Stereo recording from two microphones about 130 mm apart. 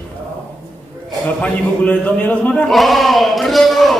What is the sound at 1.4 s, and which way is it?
Speech, 10° left (ahead or behind).